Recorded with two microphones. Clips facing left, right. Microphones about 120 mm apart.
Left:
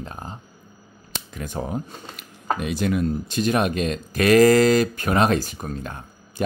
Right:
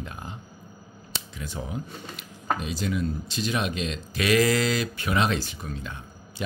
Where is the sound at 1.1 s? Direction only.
50° left (ahead or behind).